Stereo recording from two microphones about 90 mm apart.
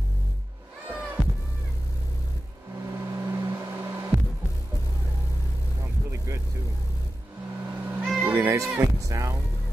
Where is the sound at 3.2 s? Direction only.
30° right (ahead or behind).